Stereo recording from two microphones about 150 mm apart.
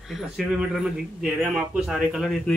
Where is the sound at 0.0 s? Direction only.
5° right (ahead or behind).